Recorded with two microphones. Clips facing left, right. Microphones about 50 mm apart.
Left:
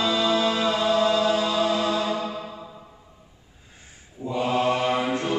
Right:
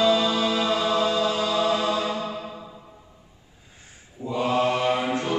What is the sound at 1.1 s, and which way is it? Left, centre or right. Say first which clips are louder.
Chant: left 2 dB; centre.